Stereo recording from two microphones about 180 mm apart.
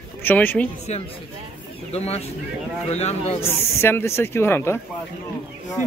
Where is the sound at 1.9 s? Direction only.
35° left (ahead or behind).